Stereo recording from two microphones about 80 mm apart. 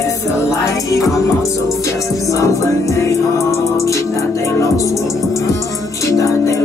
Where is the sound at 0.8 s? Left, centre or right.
Left.